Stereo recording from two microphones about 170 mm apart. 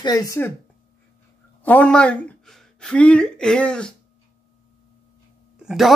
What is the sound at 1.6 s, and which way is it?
A woman's voice, 10° left (ahead or behind).